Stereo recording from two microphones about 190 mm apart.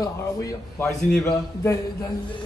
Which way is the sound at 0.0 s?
15° left (ahead or behind).